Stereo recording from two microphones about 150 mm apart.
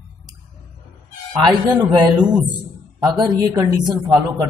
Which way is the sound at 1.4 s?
30° right (ahead or behind).